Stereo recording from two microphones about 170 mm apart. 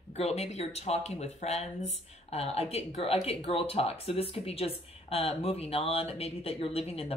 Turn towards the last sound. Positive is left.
turn(degrees=35)  # may be behind; listen again after turning